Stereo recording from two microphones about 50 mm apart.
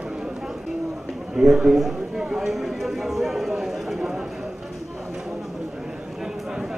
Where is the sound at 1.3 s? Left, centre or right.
Centre.